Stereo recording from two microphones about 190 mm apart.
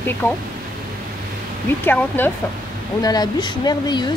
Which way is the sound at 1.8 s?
10° left (ahead or behind).